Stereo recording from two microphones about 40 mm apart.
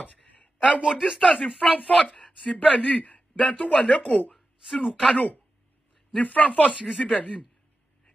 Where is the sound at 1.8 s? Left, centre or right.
Left.